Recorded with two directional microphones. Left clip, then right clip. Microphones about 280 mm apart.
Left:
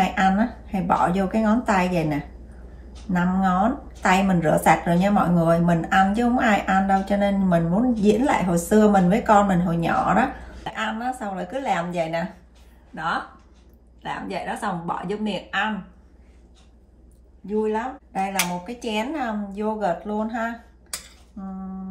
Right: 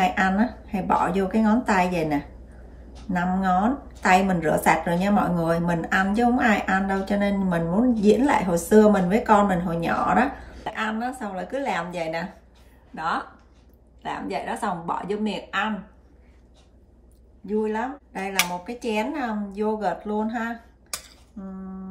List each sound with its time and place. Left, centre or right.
0.0 s a woman's voice: centre
17.5 s speech: centre